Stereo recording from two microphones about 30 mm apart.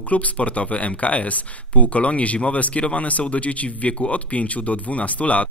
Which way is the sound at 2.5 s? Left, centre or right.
Left.